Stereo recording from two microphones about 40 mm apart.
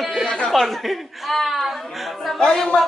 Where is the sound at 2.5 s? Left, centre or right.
Centre.